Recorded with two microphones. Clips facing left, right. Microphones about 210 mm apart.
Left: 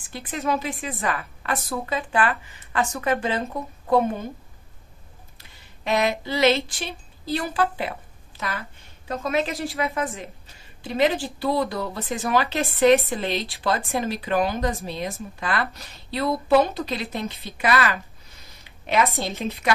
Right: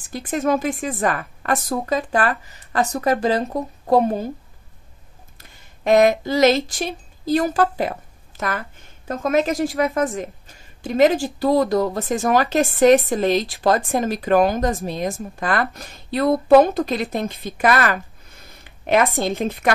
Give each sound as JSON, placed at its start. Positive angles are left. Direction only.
{"t": 0.0, "sound": "a woman's voice", "side_deg": -45}
{"t": 5.4, "sound": "a woman's voice", "side_deg": -45}